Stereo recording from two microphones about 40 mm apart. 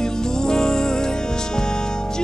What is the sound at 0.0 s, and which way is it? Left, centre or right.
Music, centre.